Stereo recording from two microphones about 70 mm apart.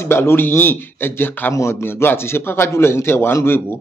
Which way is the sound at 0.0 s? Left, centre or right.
Left.